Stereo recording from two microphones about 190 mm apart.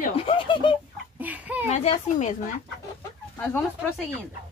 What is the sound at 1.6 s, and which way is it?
Speech, 35° left (ahead or behind).